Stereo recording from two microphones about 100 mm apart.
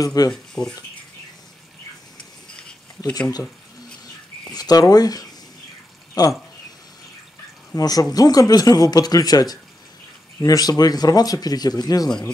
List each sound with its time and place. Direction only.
0.0 s speech: 40° left (ahead or behind)
0.3 s speech: 5° left (ahead or behind)
3.2 s speech: 40° left (ahead or behind)
4.5 s speech: 40° left (ahead or behind)
7.7 s speech: 40° left (ahead or behind)